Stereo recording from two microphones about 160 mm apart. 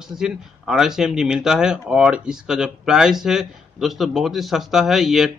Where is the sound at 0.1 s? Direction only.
5° right (ahead or behind).